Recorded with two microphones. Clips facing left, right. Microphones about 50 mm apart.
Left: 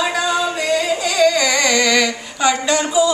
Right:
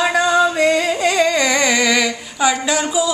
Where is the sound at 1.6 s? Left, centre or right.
Centre.